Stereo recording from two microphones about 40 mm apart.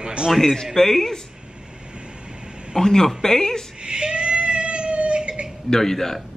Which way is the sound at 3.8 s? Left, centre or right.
Right.